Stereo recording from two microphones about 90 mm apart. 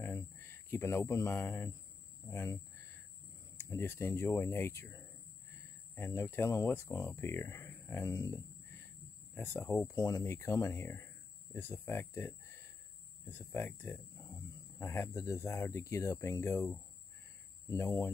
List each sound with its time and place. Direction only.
0.0 s a sound: 30° left (ahead or behind)
2.2 s cricket: 25° left (ahead or behind)
3.5 s speech: 30° left (ahead or behind)
9.9 s speech: 45° left (ahead or behind)
10.2 s speech: 30° left (ahead or behind)